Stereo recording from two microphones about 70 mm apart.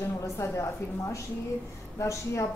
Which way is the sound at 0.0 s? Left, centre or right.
Left.